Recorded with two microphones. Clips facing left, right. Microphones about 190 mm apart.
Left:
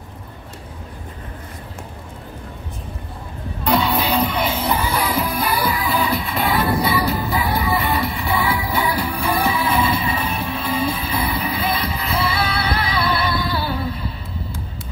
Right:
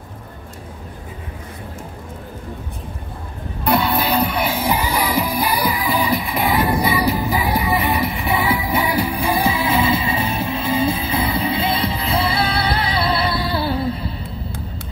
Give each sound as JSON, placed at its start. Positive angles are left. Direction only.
{"t": 3.6, "sound": "music", "side_deg": -5}